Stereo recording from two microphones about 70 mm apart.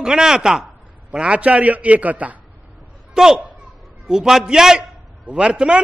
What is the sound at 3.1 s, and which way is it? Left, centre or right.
A man's voice, centre.